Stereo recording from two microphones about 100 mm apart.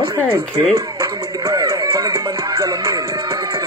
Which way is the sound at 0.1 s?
25° right (ahead or behind).